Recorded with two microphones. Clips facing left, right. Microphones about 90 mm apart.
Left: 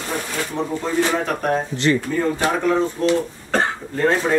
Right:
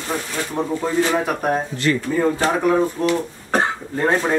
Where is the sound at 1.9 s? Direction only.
20° left (ahead or behind).